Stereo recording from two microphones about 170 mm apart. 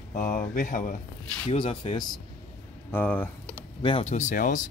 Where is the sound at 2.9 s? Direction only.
10° left (ahead or behind).